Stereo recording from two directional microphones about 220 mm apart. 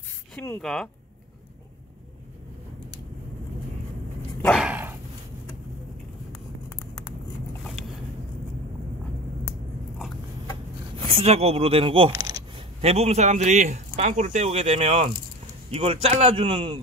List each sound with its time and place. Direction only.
0.3 s speech: 5° left (ahead or behind)
4.4 s dog: centre (ahead or behind)
11.1 s speech: 25° right (ahead or behind)
12.1 s coin: 15° right (ahead or behind)
12.8 s speech: 30° right (ahead or behind)